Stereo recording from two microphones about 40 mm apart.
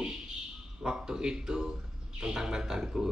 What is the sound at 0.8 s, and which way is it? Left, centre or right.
Speech, centre.